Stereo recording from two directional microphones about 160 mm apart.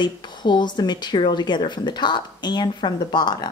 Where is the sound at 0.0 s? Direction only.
25° left (ahead or behind).